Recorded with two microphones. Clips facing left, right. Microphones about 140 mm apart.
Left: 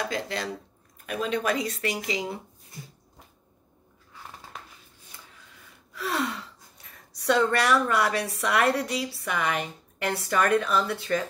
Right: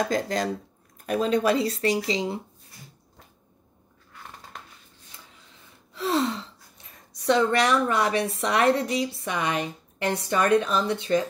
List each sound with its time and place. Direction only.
0.1 s speech: 40° right (ahead or behind); by 2.4 s 25° right (ahead or behind)
4.5 s a sound: 5° left (ahead or behind)
5.9 s gasp: 25° right (ahead or behind)
7.2 s a woman's voice: 20° right (ahead or behind)